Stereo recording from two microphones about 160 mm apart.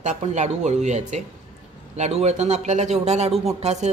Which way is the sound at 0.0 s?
50° right (ahead or behind).